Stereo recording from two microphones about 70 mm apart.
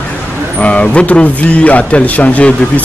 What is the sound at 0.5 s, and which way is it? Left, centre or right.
Speech, centre.